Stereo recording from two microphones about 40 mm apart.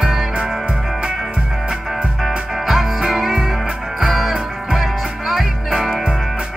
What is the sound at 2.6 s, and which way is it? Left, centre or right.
Music, centre.